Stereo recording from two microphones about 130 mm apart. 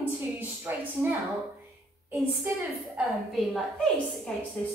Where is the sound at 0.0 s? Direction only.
15° right (ahead or behind).